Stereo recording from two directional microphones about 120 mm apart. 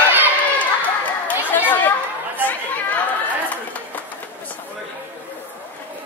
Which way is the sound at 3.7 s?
15° left (ahead or behind).